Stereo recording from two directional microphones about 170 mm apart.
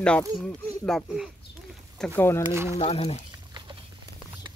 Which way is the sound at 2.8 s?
35° left (ahead or behind).